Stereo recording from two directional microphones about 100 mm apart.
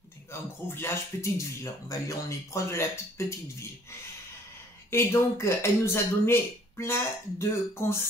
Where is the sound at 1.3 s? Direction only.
30° left (ahead or behind).